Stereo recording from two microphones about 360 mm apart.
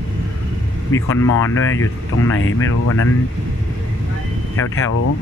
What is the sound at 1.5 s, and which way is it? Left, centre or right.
Speech, left.